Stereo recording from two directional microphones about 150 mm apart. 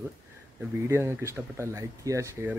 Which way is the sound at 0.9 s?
20° right (ahead or behind).